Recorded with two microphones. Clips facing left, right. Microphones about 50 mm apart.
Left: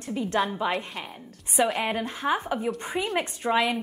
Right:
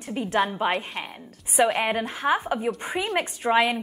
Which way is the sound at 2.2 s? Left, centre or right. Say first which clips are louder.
Right 3 dB; centre.